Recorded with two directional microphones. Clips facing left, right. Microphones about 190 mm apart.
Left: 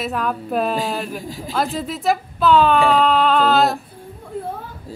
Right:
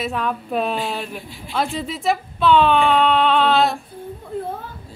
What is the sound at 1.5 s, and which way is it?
Speech, centre (ahead or behind).